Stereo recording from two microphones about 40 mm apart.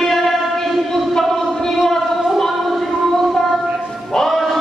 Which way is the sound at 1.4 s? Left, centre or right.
Centre.